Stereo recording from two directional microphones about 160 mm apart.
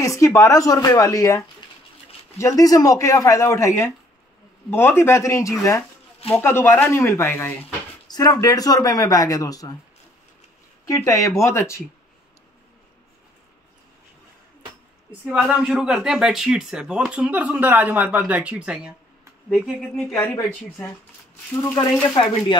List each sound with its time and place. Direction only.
0.0 s speech: 20° left (ahead or behind)
6.2 s a man's voice: 5° left (ahead or behind); by 9.8 s 20° left (ahead or behind)
10.9 s speech: 20° left (ahead or behind)
15.4 s speech: 5° right (ahead or behind)
19.5 s speech: 5° left (ahead or behind)
22.1 s speech: 30° left (ahead or behind)